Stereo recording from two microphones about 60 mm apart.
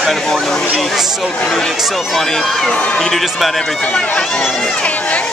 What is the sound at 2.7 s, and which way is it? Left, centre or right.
Speech, centre.